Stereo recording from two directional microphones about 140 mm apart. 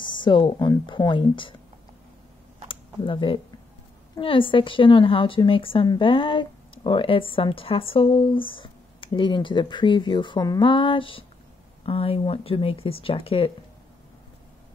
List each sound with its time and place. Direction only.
0.0 s speech: 35° left (ahead or behind)
2.7 s a sound: 35° left (ahead or behind)
4.2 s speech: 40° left (ahead or behind)